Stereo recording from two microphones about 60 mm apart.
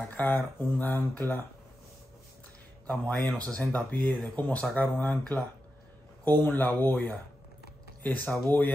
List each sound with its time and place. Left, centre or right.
0.1 s speech: left
2.9 s a man's voice: centre